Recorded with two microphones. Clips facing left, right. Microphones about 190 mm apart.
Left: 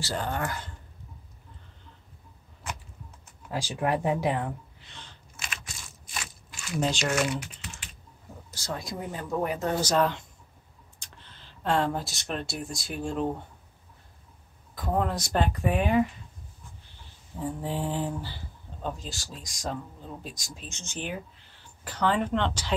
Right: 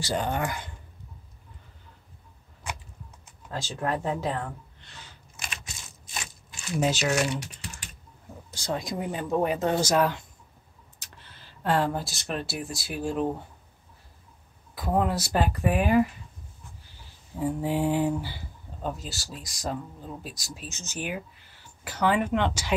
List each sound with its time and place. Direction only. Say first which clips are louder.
0.0 s speech: right 3 dB; 15° right (ahead or behind)
3.4 s speech: left 2 dB; 10° left (ahead or behind)
4.7 s a sound: even; centre (ahead or behind)
6.8 s speech: right 2 dB; 5° right (ahead or behind)
8.5 s speech: right 4 dB; 15° right (ahead or behind)
14.8 s speech: right 2 dB; 10° right (ahead or behind)
17.4 s speech: right 5 dB; 10° right (ahead or behind)